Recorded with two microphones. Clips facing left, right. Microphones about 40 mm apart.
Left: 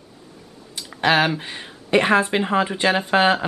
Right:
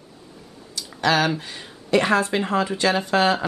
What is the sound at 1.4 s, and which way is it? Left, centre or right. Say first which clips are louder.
Speech: left 3 dB; left.